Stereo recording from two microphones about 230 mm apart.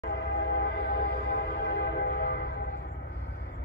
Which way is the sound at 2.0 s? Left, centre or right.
Left.